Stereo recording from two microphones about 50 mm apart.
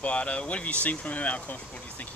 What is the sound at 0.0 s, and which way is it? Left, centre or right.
Speech, left.